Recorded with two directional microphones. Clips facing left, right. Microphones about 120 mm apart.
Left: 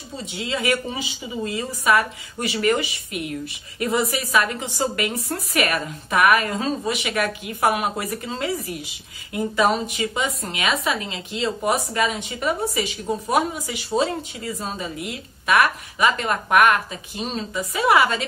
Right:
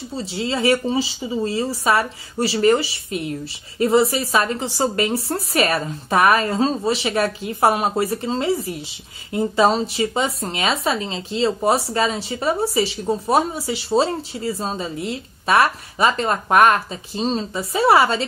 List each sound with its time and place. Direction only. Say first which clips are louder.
0.2 s speech: right 5 dB; 30° right (ahead or behind)